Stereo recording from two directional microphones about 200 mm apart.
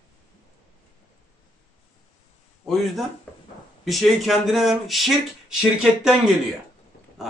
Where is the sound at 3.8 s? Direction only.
Centre (ahead or behind).